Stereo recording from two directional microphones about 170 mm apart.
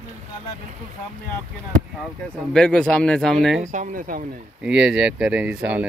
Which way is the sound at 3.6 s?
45° right (ahead or behind).